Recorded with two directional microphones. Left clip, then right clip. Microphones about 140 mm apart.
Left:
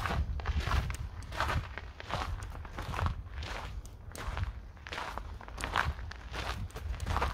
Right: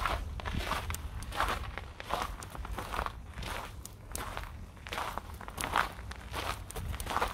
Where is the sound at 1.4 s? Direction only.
10° right (ahead or behind).